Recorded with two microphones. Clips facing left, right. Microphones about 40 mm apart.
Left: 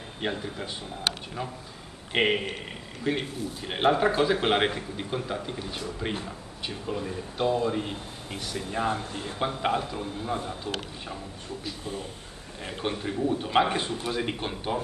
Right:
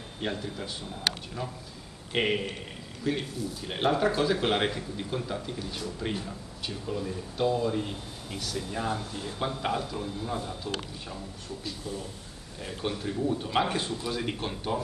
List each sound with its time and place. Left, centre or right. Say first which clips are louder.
0.2 s speech: left 2 dB; centre
2.1 s a man's voice: left 3 dB; left
11.8 s a man's voice: left 1 dB; left; by 14.8 s centre